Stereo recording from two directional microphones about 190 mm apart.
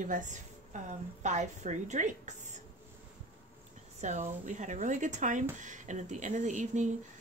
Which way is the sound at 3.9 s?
40° right (ahead or behind).